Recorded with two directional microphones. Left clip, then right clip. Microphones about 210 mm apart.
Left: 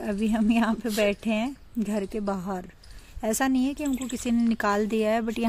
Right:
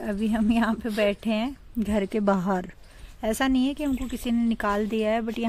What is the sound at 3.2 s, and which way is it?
A woman's voice, centre (ahead or behind).